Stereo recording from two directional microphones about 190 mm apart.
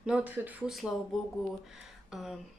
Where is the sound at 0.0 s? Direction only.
5° right (ahead or behind).